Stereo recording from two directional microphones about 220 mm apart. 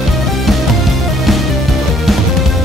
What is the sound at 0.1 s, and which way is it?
Music, centre (ahead or behind).